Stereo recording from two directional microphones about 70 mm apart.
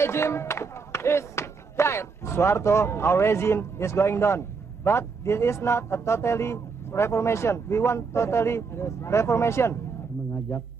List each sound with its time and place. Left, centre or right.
0.0 s speech: left